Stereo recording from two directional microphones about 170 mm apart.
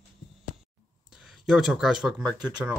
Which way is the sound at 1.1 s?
Centre (ahead or behind).